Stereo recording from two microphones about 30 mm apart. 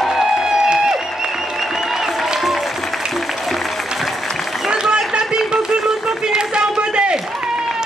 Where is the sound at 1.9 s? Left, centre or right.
Centre.